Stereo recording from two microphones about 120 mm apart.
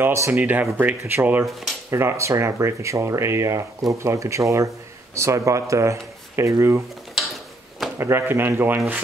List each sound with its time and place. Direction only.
0.0 s speech: 20° right (ahead or behind)
1.4 s speech: centre (ahead or behind)
1.9 s speech: 20° right (ahead or behind)
8.0 s speech: 20° right (ahead or behind)